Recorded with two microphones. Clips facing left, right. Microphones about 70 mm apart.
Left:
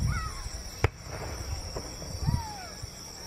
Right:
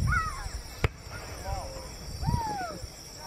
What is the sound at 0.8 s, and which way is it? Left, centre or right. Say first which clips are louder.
Fireworks: left 2 dB; centre.